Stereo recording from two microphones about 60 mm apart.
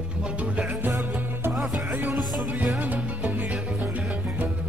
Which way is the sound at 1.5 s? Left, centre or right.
Centre.